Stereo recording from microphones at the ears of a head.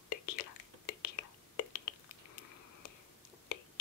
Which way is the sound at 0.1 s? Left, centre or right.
Left.